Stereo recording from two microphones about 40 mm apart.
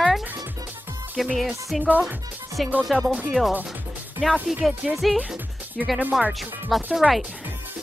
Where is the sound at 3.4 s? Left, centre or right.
Left.